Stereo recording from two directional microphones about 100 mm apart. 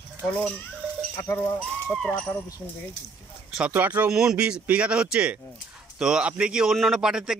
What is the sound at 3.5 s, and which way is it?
Speech, 15° right (ahead or behind).